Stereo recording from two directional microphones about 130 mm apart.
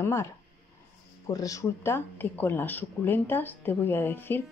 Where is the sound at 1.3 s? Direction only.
25° left (ahead or behind).